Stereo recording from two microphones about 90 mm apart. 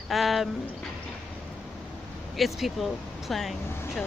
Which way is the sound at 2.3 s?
Centre (ahead or behind).